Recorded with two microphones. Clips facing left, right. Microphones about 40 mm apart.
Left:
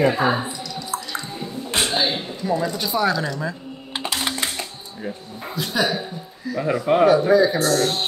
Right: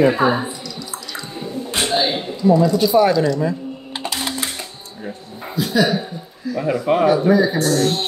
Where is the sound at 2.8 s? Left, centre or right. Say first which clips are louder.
Right 6 dB; centre.